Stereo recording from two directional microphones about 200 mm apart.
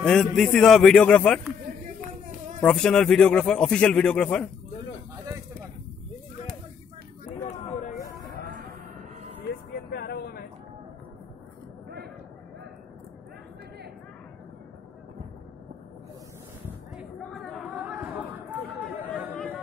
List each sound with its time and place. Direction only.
0.0 s speech: 5° left (ahead or behind)
2.6 s speech: 5° left (ahead or behind)
9.8 s vehicle: 50° left (ahead or behind)
16.6 s chatter: centre (ahead or behind)